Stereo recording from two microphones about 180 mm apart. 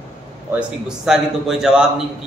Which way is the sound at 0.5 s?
5° right (ahead or behind).